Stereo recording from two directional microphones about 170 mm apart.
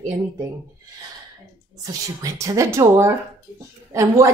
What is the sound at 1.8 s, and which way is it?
A woman's voice, 20° right (ahead or behind).